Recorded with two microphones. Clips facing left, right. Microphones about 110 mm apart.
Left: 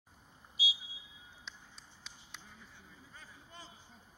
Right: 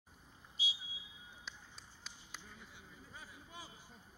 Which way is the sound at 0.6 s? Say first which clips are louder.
Left 5 dB; 10° left (ahead or behind).